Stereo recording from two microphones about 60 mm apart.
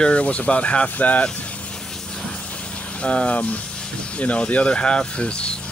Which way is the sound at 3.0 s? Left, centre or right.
Centre.